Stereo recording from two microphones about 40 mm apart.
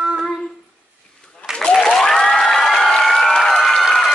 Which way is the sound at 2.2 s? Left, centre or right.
Centre.